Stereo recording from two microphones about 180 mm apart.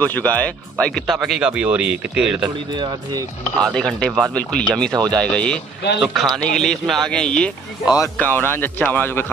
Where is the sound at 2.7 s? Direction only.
25° right (ahead or behind).